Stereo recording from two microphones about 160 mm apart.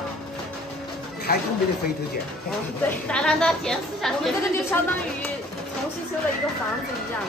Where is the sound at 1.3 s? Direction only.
70° left (ahead or behind).